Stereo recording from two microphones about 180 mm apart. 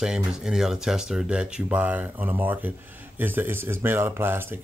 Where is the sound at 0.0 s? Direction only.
5° right (ahead or behind).